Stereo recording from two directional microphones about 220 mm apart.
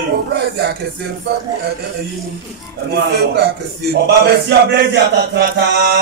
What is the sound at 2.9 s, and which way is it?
Speech, 50° right (ahead or behind).